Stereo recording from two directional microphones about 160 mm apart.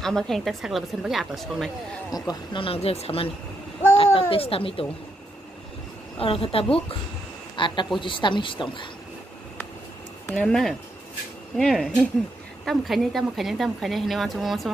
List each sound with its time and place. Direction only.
0.0 s a woman's voice: centre (ahead or behind)
2.1 s speech: 25° left (ahead or behind)
6.1 s a man's voice: 35° left (ahead or behind)
10.3 s a woman's voice: 5° left (ahead or behind)